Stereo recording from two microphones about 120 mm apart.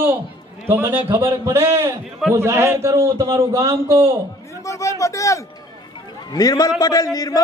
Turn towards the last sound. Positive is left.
turn(degrees=30)  # may be behind; listen again after turning